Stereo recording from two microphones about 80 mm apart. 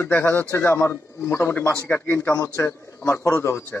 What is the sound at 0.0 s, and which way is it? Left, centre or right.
A man's voice, left.